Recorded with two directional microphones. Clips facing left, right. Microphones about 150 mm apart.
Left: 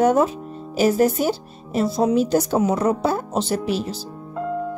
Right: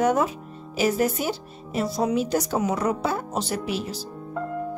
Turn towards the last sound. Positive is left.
turn(degrees=30)  # may be behind; listen again after turning